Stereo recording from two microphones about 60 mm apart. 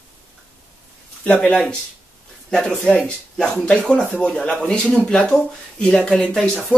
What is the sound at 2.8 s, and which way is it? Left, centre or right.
Speech, centre.